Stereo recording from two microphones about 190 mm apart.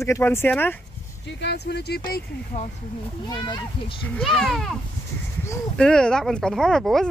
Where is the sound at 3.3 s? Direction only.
25° left (ahead or behind).